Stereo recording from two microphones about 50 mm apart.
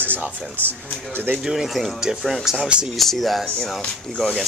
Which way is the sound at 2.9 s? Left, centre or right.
Centre.